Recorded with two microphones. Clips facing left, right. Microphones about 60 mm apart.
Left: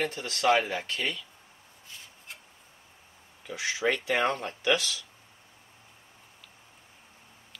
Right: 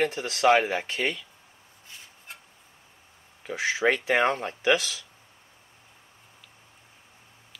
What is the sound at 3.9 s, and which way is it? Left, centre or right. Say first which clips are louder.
Speech: right 4 dB; centre.